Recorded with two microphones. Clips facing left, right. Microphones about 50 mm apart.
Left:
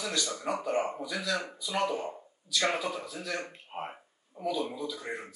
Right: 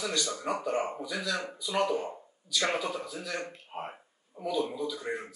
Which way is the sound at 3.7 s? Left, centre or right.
Centre.